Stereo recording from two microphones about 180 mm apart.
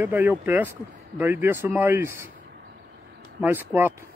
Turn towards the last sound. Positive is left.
turn(degrees=-10)  # may be behind; listen again after turning